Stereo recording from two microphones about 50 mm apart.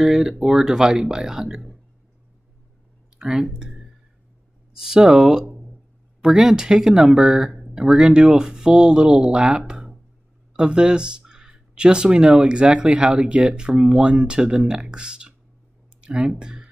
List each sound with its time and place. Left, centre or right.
0.0 s speech: centre
3.2 s speech: centre